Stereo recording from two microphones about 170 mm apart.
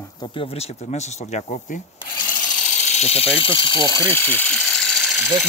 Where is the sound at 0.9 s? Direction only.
40° left (ahead or behind).